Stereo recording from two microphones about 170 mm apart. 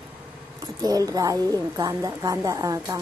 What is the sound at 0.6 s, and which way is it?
Speech, 20° right (ahead or behind).